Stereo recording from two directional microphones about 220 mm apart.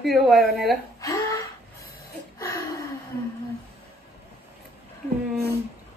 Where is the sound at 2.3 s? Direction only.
15° left (ahead or behind).